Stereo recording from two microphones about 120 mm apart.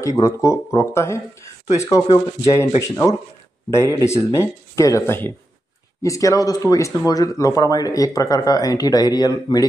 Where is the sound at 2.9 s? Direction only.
25° left (ahead or behind).